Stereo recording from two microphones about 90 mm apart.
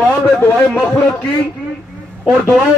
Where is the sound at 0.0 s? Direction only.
20° left (ahead or behind).